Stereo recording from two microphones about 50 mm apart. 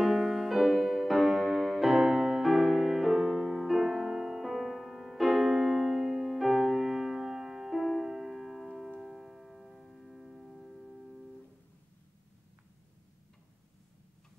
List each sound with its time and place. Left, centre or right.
0.0 s music: centre